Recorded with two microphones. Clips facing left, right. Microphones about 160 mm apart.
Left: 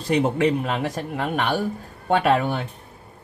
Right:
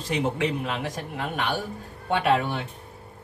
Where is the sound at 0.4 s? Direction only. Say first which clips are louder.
Left 6 dB; 50° left (ahead or behind).